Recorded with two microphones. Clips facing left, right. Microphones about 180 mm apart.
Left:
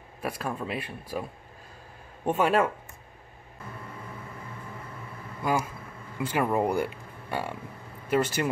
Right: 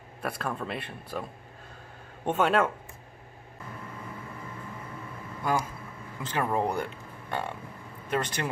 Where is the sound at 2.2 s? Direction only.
5° left (ahead or behind).